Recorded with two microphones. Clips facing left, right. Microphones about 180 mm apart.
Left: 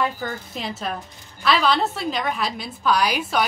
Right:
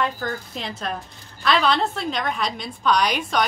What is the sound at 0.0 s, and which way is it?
A woman's voice, centre (ahead or behind).